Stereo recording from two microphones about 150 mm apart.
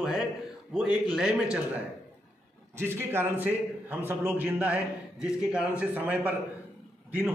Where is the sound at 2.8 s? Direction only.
15° right (ahead or behind).